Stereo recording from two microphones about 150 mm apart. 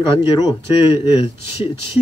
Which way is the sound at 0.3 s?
30° left (ahead or behind).